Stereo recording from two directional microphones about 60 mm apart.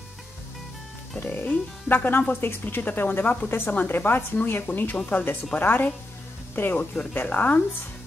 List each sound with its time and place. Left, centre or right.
1.2 s a woman's voice: left